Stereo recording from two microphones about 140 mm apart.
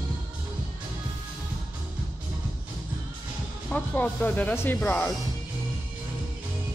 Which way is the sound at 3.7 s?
10° left (ahead or behind).